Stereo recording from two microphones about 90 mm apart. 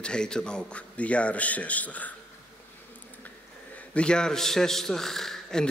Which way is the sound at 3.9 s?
10° left (ahead or behind).